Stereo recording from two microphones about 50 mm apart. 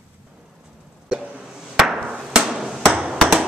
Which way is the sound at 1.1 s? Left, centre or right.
Right.